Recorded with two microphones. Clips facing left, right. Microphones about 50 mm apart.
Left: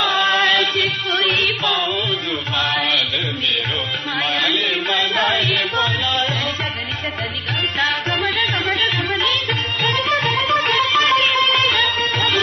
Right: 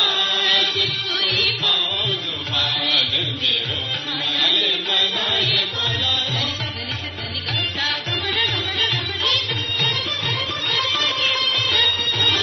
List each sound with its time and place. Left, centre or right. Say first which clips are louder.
0.0 s music: left 5 dB; left
2.5 s mantra: left 3 dB; left
4.2 s music: left 2 dB; left
7.8 s music: left 5 dB; left